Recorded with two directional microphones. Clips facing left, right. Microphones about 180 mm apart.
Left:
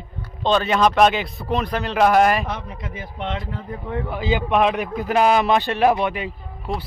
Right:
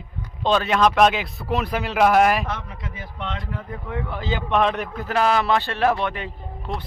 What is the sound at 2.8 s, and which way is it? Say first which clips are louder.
A man's voice: left 3 dB; 25° left (ahead or behind).